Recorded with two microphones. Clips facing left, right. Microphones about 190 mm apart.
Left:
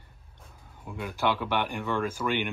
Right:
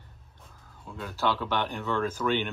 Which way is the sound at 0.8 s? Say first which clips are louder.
Left 1 dB; 15° left (ahead or behind).